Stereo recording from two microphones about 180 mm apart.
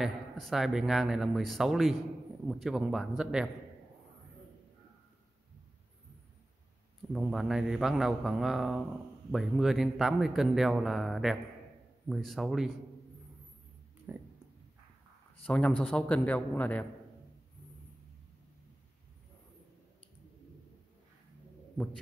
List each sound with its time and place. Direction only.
0.0 s speech: centre (ahead or behind)
7.1 s speech: centre (ahead or behind)
14.1 s speech: 10° right (ahead or behind)
15.4 s speech: 5° left (ahead or behind)